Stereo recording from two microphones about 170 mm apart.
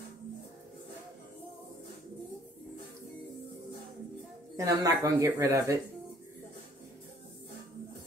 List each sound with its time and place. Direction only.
4.6 s speech: 20° right (ahead or behind)